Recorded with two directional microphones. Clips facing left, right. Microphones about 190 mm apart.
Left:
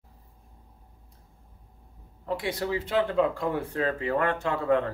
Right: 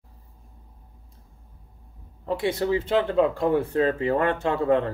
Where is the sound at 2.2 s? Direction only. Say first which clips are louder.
Right 5 dB; 25° right (ahead or behind).